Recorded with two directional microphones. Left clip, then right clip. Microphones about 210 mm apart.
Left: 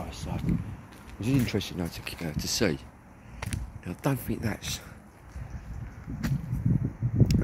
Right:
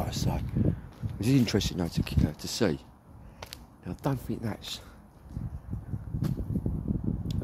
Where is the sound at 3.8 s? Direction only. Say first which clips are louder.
Left 2 dB; 5° right (ahead or behind).